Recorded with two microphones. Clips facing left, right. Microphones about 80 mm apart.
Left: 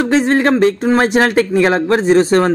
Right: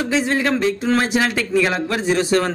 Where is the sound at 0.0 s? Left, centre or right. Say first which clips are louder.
Left 7 dB; left.